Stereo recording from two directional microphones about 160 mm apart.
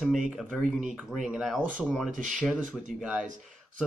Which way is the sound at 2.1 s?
50° right (ahead or behind).